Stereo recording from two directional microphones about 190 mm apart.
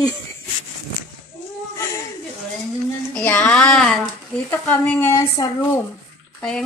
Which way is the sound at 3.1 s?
10° left (ahead or behind).